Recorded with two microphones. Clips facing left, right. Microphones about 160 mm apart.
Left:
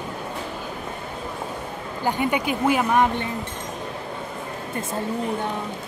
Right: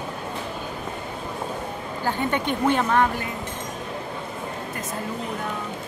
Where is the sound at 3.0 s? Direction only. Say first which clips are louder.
Left 2 dB; 25° left (ahead or behind).